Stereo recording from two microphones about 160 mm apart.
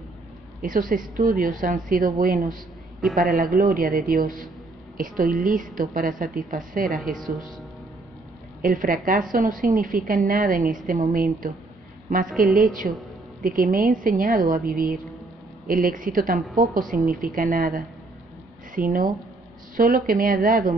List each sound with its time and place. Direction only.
0.6 s a woman's voice: 60° right (ahead or behind)
3.0 s a woman's voice: centre (ahead or behind)
3.3 s a woman's voice: 65° right (ahead or behind)
8.6 s a woman's voice: 60° right (ahead or behind)
12.5 s a woman's voice: 60° right (ahead or behind)